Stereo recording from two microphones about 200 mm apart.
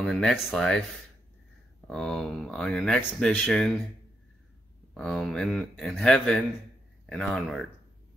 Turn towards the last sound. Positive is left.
turn(degrees=0)  # may be behind; listen again after turning